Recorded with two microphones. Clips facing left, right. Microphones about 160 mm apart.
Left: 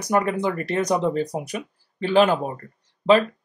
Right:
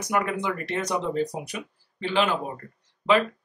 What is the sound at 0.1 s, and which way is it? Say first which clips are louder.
Speech: left 5 dB; 35° left (ahead or behind).